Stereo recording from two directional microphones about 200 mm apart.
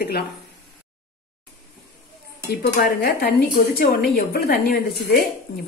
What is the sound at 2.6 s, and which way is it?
A woman's voice, 50° left (ahead or behind).